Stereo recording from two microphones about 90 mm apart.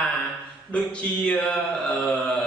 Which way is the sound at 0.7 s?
15° left (ahead or behind).